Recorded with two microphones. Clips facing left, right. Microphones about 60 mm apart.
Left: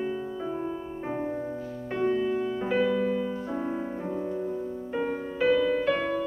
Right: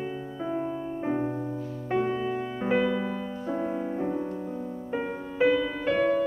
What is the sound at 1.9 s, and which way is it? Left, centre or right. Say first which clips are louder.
Music: left 1 dB; centre.